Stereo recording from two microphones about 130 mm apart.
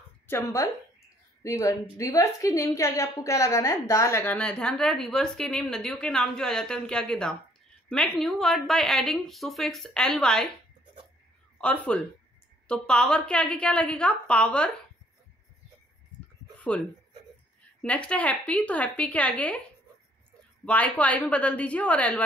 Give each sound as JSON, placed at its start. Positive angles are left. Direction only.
{"t": 0.3, "sound": "a woman's voice", "side_deg": 20}
{"t": 11.5, "sound": "a woman's voice", "side_deg": 10}
{"t": 16.5, "sound": "a sound", "side_deg": 10}
{"t": 17.8, "sound": "a woman's voice", "side_deg": 10}
{"t": 20.6, "sound": "a woman's voice", "side_deg": 10}